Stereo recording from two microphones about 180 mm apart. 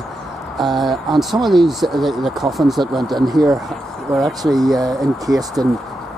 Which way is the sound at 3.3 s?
20° right (ahead or behind).